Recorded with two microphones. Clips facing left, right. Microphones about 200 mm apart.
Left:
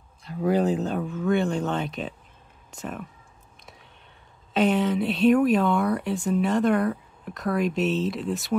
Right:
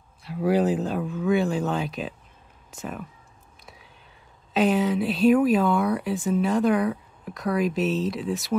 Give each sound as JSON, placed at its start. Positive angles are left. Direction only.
{"t": 0.2, "sound": "speech", "side_deg": -5}
{"t": 3.6, "sound": "a sound", "side_deg": 0}
{"t": 4.6, "sound": "speech", "side_deg": 0}